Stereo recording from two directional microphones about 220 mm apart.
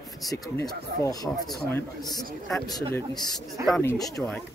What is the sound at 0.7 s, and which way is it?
Speech, 15° left (ahead or behind).